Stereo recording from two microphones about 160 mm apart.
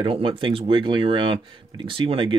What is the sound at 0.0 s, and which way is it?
Speech, 35° right (ahead or behind).